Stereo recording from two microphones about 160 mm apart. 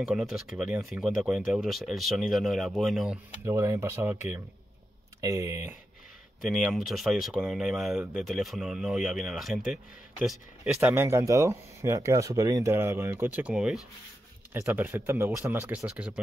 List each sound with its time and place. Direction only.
0.0 s speech: 5° right (ahead or behind)
3.4 s speech: 20° right (ahead or behind)
6.4 s speech: centre (ahead or behind)